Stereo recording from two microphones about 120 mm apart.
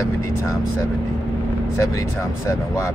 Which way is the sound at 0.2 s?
30° left (ahead or behind).